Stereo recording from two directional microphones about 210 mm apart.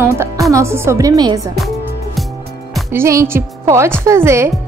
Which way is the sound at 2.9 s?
15° right (ahead or behind).